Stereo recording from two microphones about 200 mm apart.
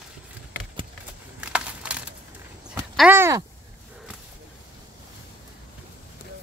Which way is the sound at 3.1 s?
10° right (ahead or behind).